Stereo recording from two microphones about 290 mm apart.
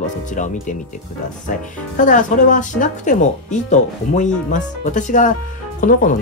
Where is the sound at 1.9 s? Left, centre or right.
Left.